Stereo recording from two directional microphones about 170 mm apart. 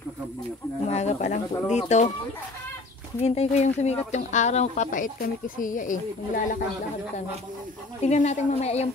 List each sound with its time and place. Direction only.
0.8 s speech: 40° left (ahead or behind)
3.2 s speech: 40° left (ahead or behind)
8.0 s a woman's voice: 40° left (ahead or behind)